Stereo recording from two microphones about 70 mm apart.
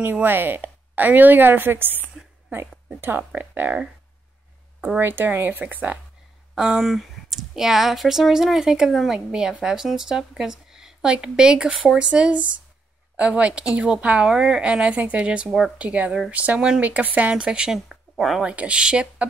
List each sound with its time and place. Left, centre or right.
0.0 s a woman's voice: right
4.8 s speech: right
6.5 s a woman's voice: centre
18.4 s speech: centre